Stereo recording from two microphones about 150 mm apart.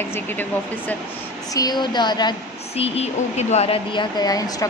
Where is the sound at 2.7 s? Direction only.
45° left (ahead or behind).